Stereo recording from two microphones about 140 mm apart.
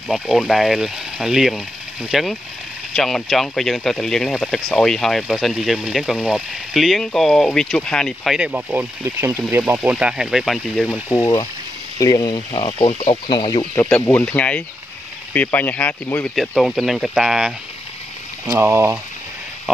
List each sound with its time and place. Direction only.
0.1 s speech: centre (ahead or behind)
8.4 s speech: 10° right (ahead or behind)
11.1 s speech: 25° left (ahead or behind)
12.6 s speech: 40° left (ahead or behind)
13.7 s speech: 15° left (ahead or behind)
16.3 s speech: centre (ahead or behind)
18.6 s speech: 20° right (ahead or behind)